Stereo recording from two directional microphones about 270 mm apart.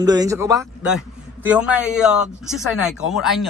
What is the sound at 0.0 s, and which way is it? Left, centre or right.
Speech, centre.